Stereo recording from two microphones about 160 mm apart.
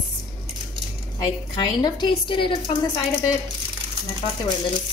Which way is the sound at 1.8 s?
30° left (ahead or behind).